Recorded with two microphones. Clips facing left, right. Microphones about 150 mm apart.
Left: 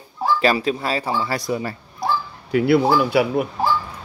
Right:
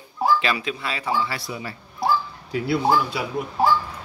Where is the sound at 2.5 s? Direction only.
65° left (ahead or behind).